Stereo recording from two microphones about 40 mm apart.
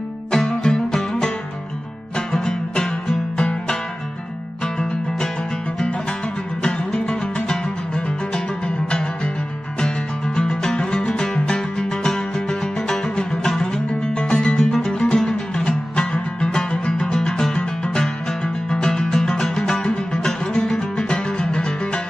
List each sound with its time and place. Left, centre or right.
0.3 s music: centre
6.6 s music: left
17.6 s music: left